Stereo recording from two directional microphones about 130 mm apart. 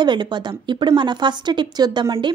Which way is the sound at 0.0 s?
35° right (ahead or behind).